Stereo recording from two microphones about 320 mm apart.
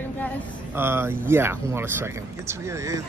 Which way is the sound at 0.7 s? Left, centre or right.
Centre.